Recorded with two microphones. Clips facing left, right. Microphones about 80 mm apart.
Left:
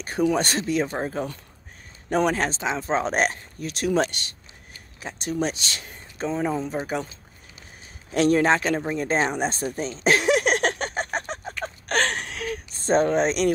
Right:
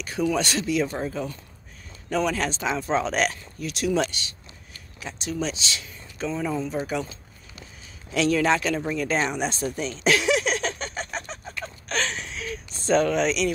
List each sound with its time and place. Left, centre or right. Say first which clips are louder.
0.0 s speech: left 2 dB; left
8.1 s a sound: left 2 dB; left
12.9 s speech: left 1 dB; left